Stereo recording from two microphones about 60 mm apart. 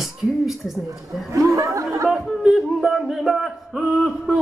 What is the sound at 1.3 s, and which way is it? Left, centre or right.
Speech, right.